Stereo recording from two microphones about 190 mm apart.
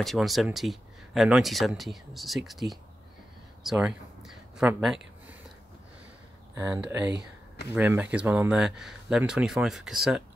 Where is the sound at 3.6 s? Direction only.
Centre (ahead or behind).